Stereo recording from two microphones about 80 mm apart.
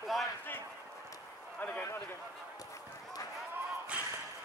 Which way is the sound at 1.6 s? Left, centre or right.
Left.